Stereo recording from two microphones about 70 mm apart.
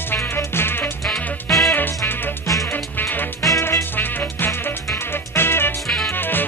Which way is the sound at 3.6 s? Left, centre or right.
Left.